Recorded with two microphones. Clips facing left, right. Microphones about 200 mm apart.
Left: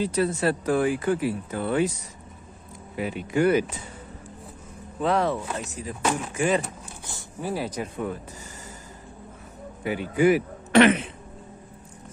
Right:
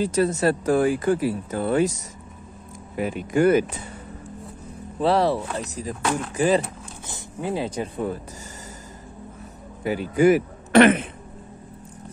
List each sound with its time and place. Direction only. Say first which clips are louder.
0.0 s speech: right 3 dB; 45° right (ahead or behind)
3.0 s speech: right 3 dB; 45° right (ahead or behind)
5.0 s speech: right 3 dB; 35° right (ahead or behind)
7.1 s speech: right 3 dB; 20° right (ahead or behind)
9.8 s a man's voice: right 3 dB; 40° right (ahead or behind)